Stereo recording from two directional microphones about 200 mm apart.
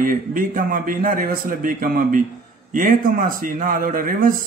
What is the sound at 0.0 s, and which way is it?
A man's voice, 40° right (ahead or behind).